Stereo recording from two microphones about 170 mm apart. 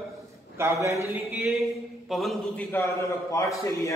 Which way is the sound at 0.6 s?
15° right (ahead or behind).